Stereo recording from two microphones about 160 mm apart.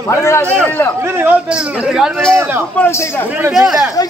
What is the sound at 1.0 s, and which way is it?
A man's voice, 10° right (ahead or behind).